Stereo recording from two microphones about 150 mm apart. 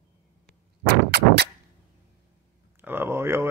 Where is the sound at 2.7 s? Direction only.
15° right (ahead or behind).